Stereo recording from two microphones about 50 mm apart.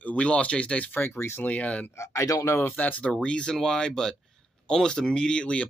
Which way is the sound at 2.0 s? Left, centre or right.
Left.